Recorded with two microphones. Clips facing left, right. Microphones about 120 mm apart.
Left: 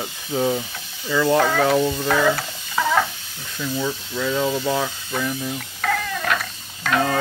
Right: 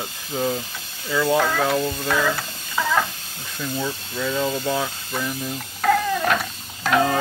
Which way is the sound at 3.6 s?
Centre (ahead or behind).